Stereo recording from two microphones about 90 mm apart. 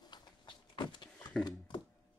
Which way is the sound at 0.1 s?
60° left (ahead or behind).